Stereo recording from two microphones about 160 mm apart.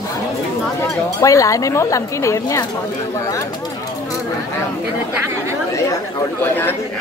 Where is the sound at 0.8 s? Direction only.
20° left (ahead or behind).